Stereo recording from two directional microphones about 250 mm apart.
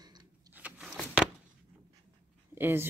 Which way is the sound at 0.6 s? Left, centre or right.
Centre.